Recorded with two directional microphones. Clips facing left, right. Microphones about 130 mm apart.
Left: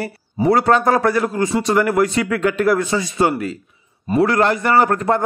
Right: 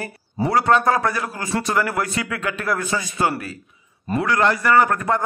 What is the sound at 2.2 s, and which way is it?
A man's voice, 35° left (ahead or behind).